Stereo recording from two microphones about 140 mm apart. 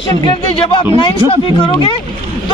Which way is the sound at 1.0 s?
40° left (ahead or behind).